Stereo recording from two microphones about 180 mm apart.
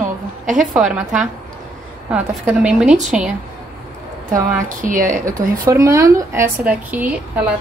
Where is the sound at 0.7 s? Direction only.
5° right (ahead or behind).